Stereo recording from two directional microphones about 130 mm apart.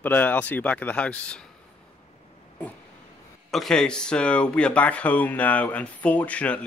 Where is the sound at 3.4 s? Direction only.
Centre (ahead or behind).